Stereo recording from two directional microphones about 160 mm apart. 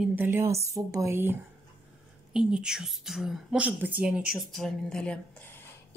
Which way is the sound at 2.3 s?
5° right (ahead or behind).